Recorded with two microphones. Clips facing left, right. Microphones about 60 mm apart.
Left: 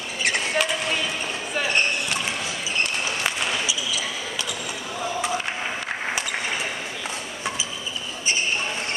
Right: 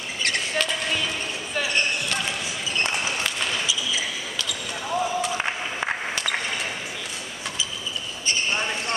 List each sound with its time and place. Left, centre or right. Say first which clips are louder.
0.2 s basketball bounce: left 2 dB; centre
3.3 s basketball bounce: left 1 dB; centre